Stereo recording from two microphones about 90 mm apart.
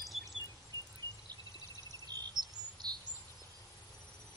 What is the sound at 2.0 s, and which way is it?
Bird vocalization, 50° right (ahead or behind).